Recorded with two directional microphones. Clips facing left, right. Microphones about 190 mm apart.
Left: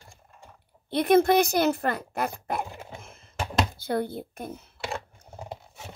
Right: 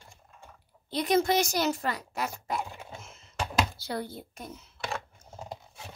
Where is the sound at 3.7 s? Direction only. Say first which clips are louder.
Left 7 dB; 55° left (ahead or behind).